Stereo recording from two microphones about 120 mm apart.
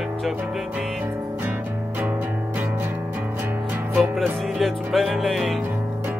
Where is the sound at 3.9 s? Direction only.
10° right (ahead or behind).